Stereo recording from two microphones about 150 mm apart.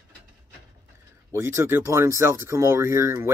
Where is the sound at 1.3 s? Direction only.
15° right (ahead or behind).